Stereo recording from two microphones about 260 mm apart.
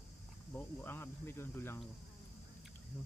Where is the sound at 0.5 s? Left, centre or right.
Centre.